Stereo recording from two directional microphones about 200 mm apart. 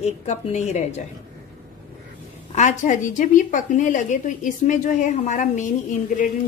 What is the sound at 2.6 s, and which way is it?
A woman's voice, 40° left (ahead or behind).